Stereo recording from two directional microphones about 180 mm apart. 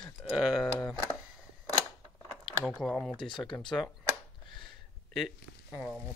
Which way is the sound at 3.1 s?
25° left (ahead or behind).